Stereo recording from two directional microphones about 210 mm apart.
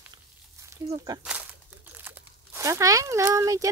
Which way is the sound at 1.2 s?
5° right (ahead or behind).